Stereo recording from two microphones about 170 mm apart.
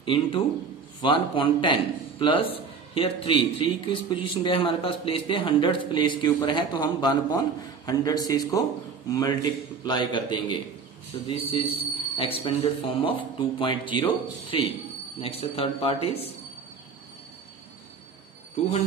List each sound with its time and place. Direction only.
0.0 s a man's voice: 30° left (ahead or behind)